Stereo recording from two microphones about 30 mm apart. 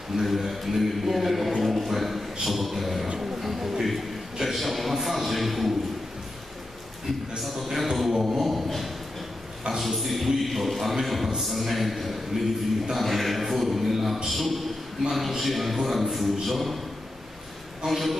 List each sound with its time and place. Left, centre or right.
0.1 s a man's voice: centre
7.5 s a man's voice: centre
8.1 s a sound: right
8.4 s a man's voice: centre
17.8 s a man's voice: centre